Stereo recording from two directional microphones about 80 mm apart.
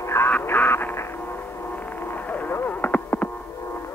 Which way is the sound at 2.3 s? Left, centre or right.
Left.